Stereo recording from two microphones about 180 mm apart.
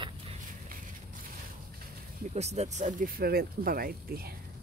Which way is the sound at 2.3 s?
35° right (ahead or behind).